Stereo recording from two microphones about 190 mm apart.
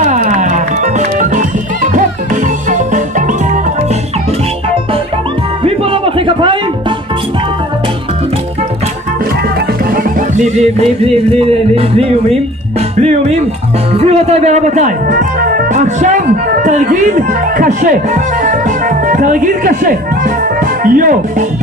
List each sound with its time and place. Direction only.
0.0 s music: 40° right (ahead or behind)
5.6 s music: 30° right (ahead or behind)
10.3 s music: 35° right (ahead or behind)
13.9 s speech: 35° right (ahead or behind)